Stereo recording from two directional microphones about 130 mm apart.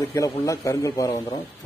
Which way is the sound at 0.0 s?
25° left (ahead or behind).